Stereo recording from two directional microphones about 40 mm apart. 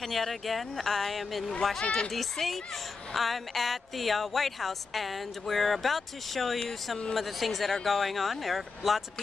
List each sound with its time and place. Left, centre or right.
0.0 s speech: centre
1.8 s speech: left
2.0 s speech: centre